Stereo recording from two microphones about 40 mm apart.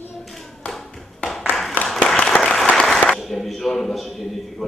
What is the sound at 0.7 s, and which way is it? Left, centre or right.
Tap, centre.